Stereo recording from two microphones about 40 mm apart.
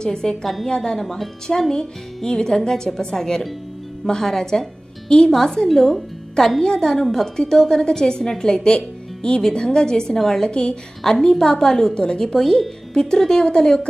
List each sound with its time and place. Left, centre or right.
0.0 s a woman's voice: centre
0.9 s a woman's voice: centre
1.5 s a woman's voice: centre
10.5 s a woman's voice: left